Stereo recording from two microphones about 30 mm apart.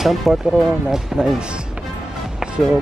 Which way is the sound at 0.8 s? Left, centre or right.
Centre.